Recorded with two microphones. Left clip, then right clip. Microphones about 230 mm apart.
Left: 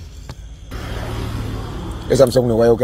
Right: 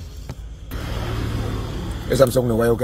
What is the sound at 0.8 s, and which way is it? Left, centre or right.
Vehicle, left.